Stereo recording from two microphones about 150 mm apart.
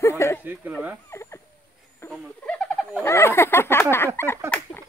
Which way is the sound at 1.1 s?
20° left (ahead or behind).